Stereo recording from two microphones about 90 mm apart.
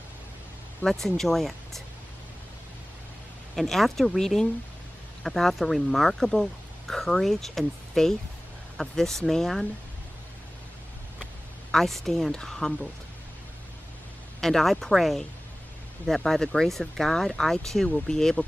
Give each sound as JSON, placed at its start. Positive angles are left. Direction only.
{"t": 0.8, "sound": "speech", "side_deg": 5}
{"t": 3.5, "sound": "speech", "side_deg": 0}
{"t": 11.7, "sound": "speech", "side_deg": 5}
{"t": 14.4, "sound": "speech", "side_deg": 0}